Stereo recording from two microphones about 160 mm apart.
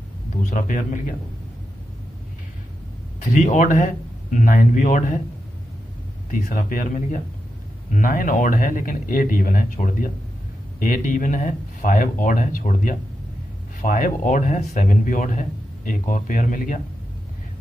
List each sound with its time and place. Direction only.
0.4 s a man's voice: 55° left (ahead or behind)
3.2 s a man's voice: 50° left (ahead or behind)
6.5 s a man's voice: 55° left (ahead or behind)